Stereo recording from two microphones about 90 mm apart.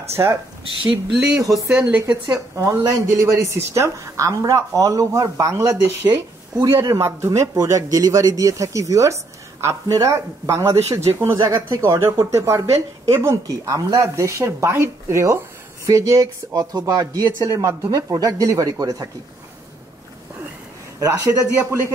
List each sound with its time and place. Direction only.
0.1 s speech: 30° right (ahead or behind)
0.8 s speech: 10° right (ahead or behind)
1.8 s speech: 20° right (ahead or behind)
2.5 s speech: 40° right (ahead or behind)
6.0 s speech: 25° right (ahead or behind); by 19.0 s 40° right (ahead or behind)
21.0 s speech: 40° right (ahead or behind)